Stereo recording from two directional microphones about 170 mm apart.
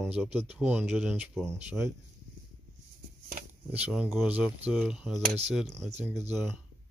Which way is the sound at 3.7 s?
Centre (ahead or behind).